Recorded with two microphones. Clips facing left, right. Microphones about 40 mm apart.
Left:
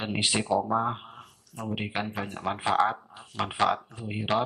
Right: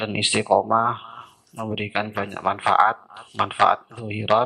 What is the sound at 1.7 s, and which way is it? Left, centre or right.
Speech, right.